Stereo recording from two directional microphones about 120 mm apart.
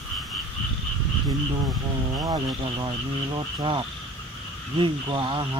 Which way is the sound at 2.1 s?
40° right (ahead or behind).